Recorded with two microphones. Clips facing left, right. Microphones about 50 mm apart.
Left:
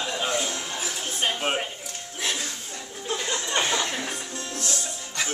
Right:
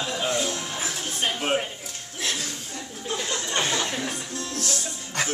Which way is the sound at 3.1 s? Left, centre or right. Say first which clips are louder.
Left 1 dB; centre.